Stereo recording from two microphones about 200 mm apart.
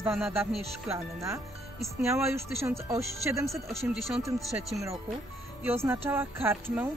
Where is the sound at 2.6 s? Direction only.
15° right (ahead or behind).